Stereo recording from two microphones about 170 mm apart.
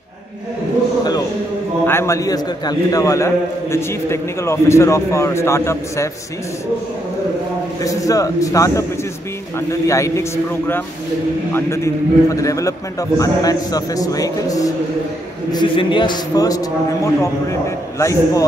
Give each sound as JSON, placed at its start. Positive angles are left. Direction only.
{"t": 1.9, "sound": "a man's voice", "side_deg": 15}
{"t": 7.8, "sound": "a man's voice", "side_deg": 20}